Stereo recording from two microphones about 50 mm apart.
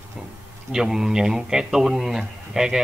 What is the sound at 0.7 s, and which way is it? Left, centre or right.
A man's voice, centre.